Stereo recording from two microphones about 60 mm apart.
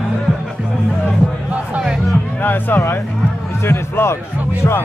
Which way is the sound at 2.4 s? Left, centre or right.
Left.